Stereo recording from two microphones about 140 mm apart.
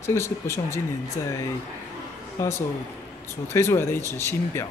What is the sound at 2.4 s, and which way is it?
A man's voice, 20° left (ahead or behind).